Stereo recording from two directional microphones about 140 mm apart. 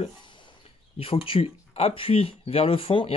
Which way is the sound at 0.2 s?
35° left (ahead or behind).